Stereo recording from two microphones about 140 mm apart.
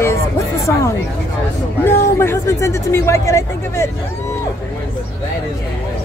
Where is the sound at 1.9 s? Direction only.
15° left (ahead or behind).